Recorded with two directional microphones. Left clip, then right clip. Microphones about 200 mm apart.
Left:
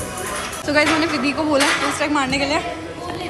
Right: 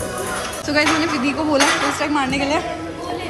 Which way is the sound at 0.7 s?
10° right (ahead or behind).